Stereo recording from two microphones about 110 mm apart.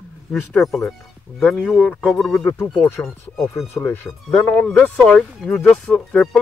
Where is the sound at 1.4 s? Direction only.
5° left (ahead or behind).